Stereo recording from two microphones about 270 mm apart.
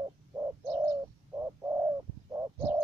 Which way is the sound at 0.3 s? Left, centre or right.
Centre.